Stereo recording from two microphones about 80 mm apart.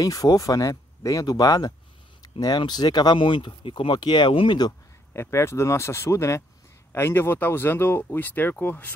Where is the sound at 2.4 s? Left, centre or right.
Left.